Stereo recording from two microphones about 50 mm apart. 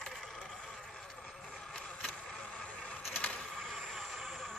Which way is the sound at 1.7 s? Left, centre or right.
Centre.